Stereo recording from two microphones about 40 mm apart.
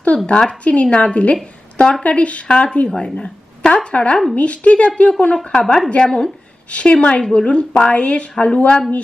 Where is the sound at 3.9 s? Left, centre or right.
Left.